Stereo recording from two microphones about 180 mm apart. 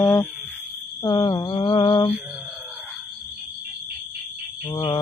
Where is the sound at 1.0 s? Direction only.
25° left (ahead or behind).